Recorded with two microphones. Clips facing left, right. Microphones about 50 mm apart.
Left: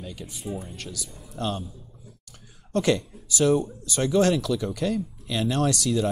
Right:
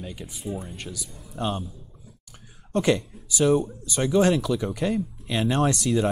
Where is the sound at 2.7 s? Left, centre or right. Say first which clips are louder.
Right 1 dB; centre.